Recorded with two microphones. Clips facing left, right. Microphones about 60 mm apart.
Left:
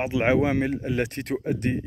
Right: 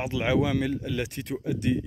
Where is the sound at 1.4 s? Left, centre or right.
Left.